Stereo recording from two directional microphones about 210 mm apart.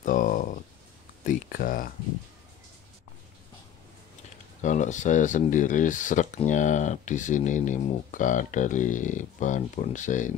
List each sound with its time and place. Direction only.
0.0 s a sound: 40° left (ahead or behind)
1.2 s speech: 40° left (ahead or behind)
4.6 s speech: 35° left (ahead or behind)